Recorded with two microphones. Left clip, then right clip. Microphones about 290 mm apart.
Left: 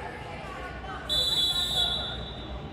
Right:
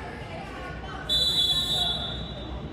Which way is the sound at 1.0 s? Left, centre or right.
Centre.